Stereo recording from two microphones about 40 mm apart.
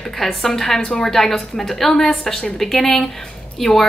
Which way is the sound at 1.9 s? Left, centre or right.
Centre.